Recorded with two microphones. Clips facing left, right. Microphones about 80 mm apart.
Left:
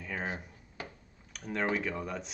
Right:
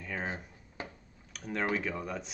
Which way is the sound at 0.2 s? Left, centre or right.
Right.